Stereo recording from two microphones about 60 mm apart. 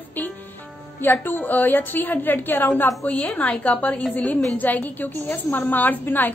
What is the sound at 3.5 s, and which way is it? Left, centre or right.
A woman's voice, left.